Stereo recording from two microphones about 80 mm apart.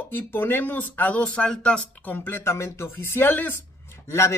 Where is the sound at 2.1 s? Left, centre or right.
Left.